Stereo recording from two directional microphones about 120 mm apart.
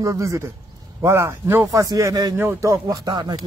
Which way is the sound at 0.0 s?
25° right (ahead or behind).